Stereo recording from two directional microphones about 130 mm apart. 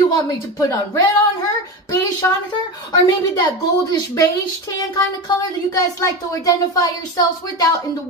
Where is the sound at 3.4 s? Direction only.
35° left (ahead or behind).